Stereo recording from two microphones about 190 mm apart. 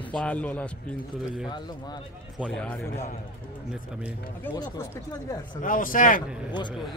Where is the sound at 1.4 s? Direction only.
25° left (ahead or behind).